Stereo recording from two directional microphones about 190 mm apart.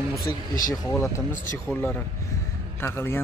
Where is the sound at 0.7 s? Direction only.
15° left (ahead or behind).